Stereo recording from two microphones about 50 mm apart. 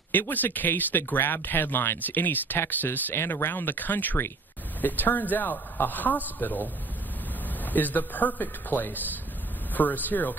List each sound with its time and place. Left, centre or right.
0.3 s speech: left
3.2 s a man's voice: left